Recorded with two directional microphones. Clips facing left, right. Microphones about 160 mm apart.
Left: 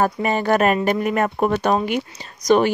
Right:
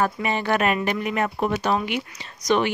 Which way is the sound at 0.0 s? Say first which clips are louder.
Left 4 dB; 40° left (ahead or behind).